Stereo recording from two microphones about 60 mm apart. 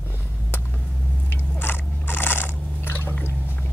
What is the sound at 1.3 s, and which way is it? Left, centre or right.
Biting, left.